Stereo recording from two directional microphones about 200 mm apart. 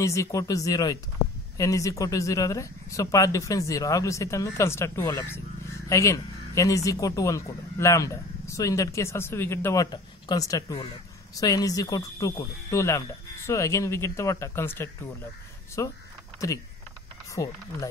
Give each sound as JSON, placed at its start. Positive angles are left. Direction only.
{"t": 0.0, "sound": "speech", "side_deg": 15}